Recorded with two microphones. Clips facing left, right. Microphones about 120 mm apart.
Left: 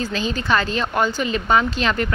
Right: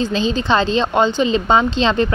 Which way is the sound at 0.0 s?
25° right (ahead or behind).